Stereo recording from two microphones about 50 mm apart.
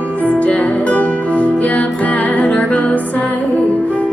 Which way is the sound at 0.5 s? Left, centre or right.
Left.